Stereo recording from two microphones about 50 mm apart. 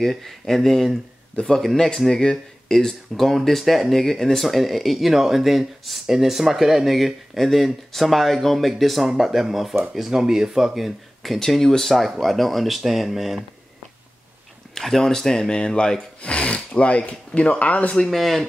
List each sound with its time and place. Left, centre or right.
0.0 s speech: centre
1.3 s a man's voice: centre
1.6 s speech: centre
11.3 s speech: centre
14.7 s speech: centre; by 17.9 s left
18.1 s speech: centre